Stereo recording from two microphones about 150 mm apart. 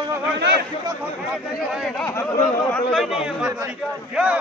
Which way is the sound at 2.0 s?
10° left (ahead or behind).